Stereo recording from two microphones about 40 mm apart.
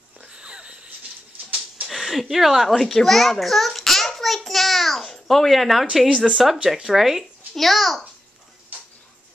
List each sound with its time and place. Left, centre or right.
0.2 s wheeze: right
1.9 s speech: centre
2.8 s a child's voice: centre
6.0 s speech: right
6.3 s a child's voice: centre